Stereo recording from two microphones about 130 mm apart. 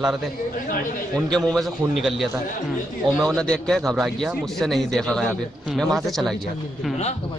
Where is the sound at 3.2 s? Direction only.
5° left (ahead or behind).